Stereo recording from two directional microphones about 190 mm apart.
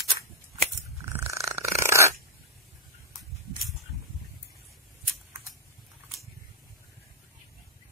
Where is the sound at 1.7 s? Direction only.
15° right (ahead or behind).